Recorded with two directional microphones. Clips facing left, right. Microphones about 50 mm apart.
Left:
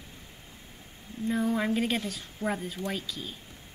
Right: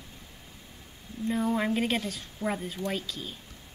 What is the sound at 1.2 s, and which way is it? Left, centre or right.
Speech, centre.